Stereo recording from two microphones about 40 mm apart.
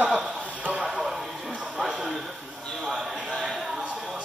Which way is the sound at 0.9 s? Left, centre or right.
Centre.